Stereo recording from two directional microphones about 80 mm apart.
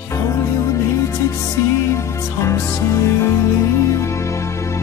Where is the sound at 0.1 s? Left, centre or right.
Left.